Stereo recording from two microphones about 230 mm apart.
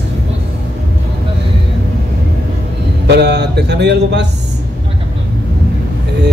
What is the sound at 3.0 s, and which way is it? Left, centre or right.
Speech, right.